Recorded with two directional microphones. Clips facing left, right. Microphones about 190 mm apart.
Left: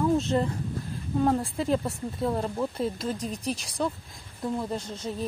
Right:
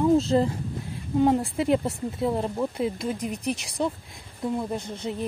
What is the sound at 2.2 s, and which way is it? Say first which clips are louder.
Speech: right 2 dB; 15° right (ahead or behind).